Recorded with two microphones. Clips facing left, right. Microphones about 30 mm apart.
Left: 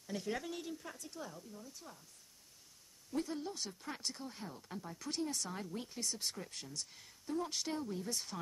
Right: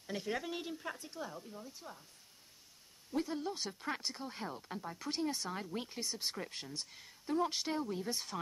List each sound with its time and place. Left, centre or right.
0.0 s speech: right
0.6 s speech: right
3.1 s speech: centre
3.7 s speech: right
4.0 s speech: centre
4.3 s speech: right
6.9 s speech: centre
7.2 s speech: right